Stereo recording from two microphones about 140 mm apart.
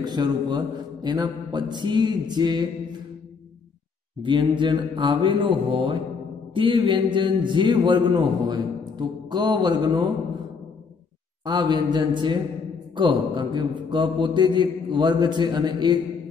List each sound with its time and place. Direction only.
0.0 s a man's voice: 30° right (ahead or behind)
4.2 s a man's voice: 35° right (ahead or behind)
11.4 s a man's voice: 30° right (ahead or behind)